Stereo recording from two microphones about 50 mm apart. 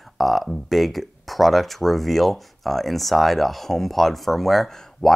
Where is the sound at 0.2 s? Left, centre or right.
Centre.